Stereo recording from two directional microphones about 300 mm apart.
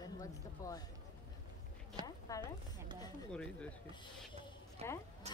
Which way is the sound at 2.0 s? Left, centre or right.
Centre.